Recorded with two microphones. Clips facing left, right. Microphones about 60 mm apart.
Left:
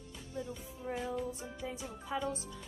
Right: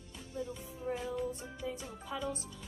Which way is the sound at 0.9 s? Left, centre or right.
Centre.